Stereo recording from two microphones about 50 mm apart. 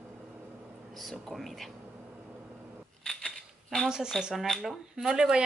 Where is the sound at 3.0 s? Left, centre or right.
Centre.